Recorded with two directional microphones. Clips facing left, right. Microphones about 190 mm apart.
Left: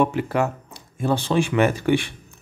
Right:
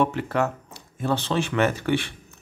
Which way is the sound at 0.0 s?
10° left (ahead or behind).